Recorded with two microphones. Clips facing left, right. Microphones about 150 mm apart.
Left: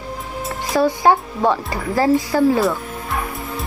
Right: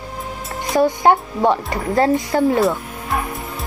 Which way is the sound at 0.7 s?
20° right (ahead or behind).